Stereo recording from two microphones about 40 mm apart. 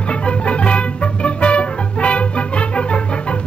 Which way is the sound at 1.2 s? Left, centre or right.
Left.